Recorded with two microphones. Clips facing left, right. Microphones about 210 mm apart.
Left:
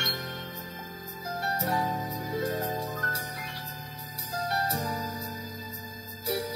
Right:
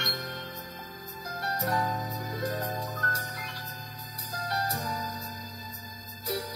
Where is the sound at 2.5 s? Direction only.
5° left (ahead or behind).